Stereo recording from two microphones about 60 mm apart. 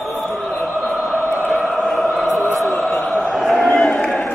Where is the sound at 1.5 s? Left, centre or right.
Centre.